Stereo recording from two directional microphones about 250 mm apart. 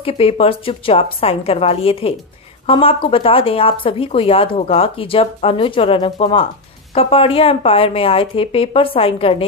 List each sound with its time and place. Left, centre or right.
0.0 s speech: left